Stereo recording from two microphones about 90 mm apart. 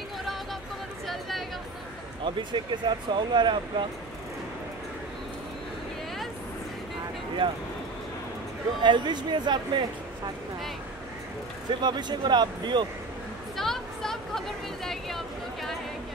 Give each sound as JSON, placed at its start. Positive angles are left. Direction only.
{"t": 0.2, "sound": "music", "side_deg": 0}
{"t": 2.2, "sound": "speech", "side_deg": -60}
{"t": 7.4, "sound": "speech", "side_deg": -70}
{"t": 8.8, "sound": "speech", "side_deg": -60}
{"t": 11.8, "sound": "speech", "side_deg": -55}
{"t": 13.6, "sound": "a sound", "side_deg": 5}